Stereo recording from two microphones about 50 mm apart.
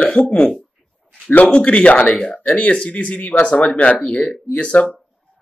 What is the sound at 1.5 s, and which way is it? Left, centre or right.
Speech, left.